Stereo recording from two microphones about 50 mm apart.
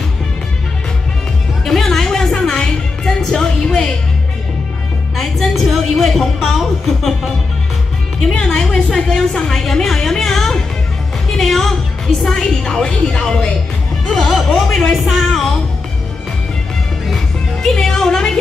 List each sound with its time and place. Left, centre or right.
1.6 s music: centre
5.1 s music: centre
8.3 s music: centre
8.8 s a woman's voice: centre
14.9 s speech: centre
17.6 s music: centre